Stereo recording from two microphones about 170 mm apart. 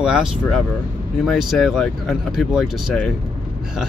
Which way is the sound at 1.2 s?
Centre (ahead or behind).